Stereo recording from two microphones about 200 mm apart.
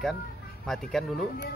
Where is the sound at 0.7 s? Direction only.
Centre (ahead or behind).